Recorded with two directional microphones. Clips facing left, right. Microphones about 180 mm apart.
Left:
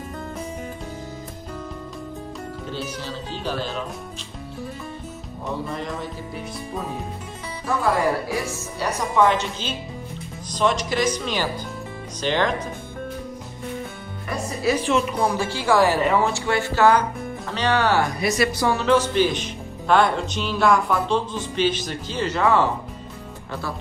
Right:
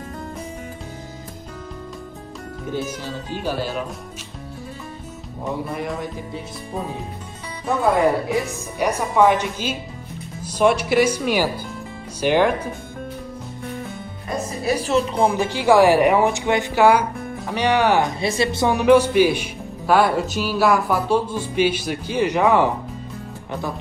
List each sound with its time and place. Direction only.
3.1 s speech: 10° right (ahead or behind)
5.5 s speech: 10° right (ahead or behind)
7.6 s speech: 20° right (ahead or behind)
14.7 s speech: 35° right (ahead or behind); by 22.7 s 15° right (ahead or behind)